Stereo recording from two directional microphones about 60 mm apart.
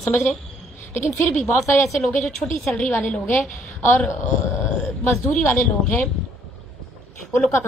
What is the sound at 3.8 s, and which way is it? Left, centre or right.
Speech, left.